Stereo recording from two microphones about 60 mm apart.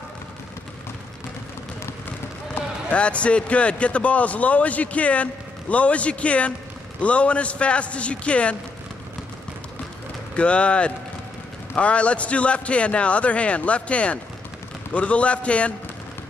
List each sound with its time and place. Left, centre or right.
2.9 s a man's voice: left
10.3 s a man's voice: centre